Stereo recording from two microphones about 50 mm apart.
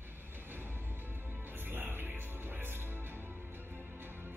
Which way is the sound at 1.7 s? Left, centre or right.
Right.